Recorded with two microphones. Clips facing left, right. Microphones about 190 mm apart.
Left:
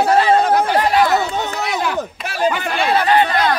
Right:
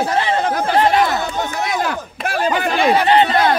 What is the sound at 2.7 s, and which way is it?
Speech, 15° right (ahead or behind).